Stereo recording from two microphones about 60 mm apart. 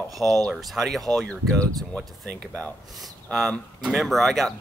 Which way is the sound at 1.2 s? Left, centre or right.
Centre.